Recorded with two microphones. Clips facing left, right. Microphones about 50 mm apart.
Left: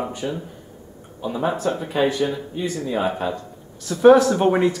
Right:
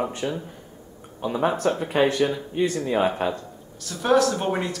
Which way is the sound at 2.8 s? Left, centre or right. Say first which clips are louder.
Left 1 dB; centre.